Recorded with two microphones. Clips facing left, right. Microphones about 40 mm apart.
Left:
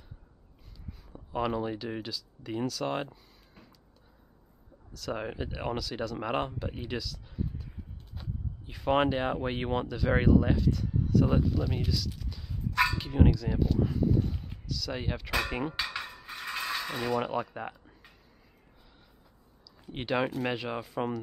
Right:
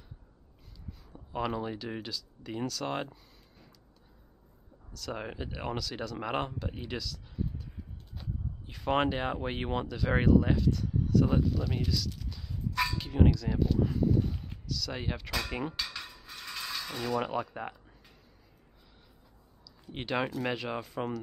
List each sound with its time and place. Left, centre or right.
1.0 s speech: centre
4.9 s speech: centre
15.7 s mechanisms: left
17.2 s speech: centre
19.8 s speech: centre